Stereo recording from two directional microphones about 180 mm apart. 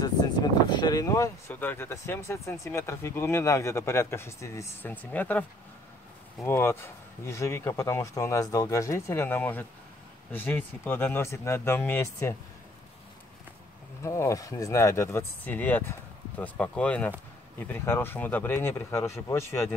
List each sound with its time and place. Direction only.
0.0 s speech: 25° left (ahead or behind); by 5.4 s 10° left (ahead or behind)
6.4 s speech: 10° left (ahead or behind)
14.0 s speech: 15° left (ahead or behind)